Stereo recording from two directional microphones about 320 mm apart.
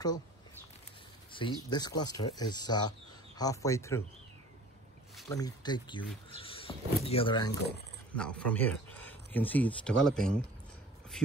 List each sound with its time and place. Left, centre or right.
1.3 s speech: centre
5.3 s speech: centre
8.2 s speech: centre